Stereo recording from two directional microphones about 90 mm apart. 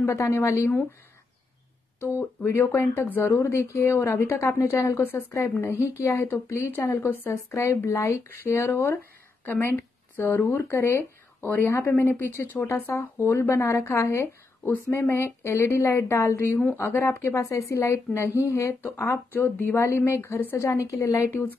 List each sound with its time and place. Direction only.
0.0 s a woman's voice: 30° left (ahead or behind)
2.0 s a woman's voice: 25° left (ahead or behind)
20.5 s a woman's voice: 35° left (ahead or behind)